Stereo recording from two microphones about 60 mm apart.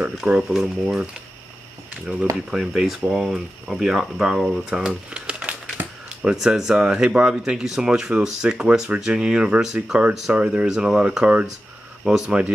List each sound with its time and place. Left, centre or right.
0.2 s speech: centre
2.3 s speech: centre
4.6 s typewriter: centre
6.2 s speech: centre
12.0 s speech: centre